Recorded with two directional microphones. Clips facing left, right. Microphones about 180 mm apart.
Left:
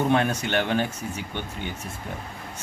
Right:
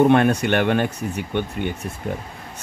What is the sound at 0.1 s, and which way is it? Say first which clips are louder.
Speech: right 6 dB; 60° right (ahead or behind).